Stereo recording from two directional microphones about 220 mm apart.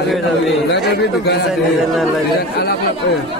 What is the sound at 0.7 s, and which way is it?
A man's voice, 50° left (ahead or behind).